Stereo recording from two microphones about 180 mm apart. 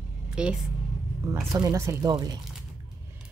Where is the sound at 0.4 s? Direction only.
5° right (ahead or behind); by 2.4 s 20° right (ahead or behind).